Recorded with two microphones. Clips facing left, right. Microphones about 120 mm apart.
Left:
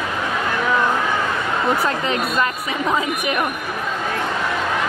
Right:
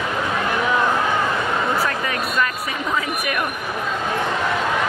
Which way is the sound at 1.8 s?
25° left (ahead or behind).